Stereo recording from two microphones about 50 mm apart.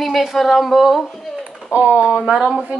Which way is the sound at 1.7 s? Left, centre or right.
Right.